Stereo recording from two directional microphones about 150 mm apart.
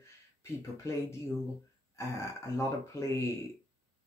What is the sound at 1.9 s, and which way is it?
Speech, 20° left (ahead or behind).